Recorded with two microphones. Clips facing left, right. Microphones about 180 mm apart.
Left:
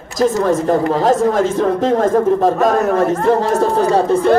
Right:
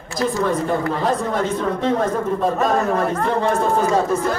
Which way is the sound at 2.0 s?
90° left.